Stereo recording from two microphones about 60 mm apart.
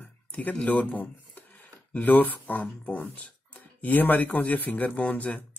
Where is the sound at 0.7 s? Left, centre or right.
Left.